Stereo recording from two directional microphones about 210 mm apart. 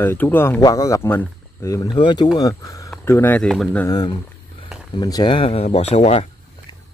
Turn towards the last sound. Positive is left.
turn(degrees=30)  # may be behind; listen again after turning